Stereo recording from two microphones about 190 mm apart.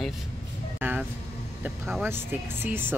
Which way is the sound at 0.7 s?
10° right (ahead or behind).